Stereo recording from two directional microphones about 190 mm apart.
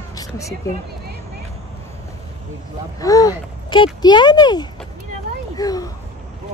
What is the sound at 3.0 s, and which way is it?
A child's voice, 20° left (ahead or behind).